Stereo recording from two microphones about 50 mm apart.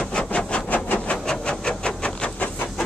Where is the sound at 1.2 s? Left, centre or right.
Centre.